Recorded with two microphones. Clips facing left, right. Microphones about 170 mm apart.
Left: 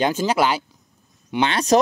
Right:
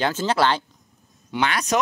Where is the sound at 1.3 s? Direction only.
25° left (ahead or behind).